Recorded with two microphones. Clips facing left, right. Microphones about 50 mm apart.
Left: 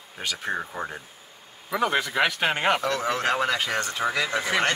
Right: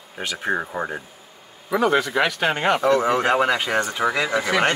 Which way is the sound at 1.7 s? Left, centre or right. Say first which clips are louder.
Right 5 dB; centre.